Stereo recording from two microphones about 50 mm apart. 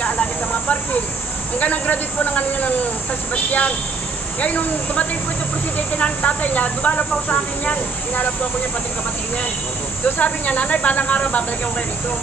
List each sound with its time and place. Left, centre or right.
0.0 s snake: left
1.6 s speech: left
4.4 s speech: left
10.0 s speech: left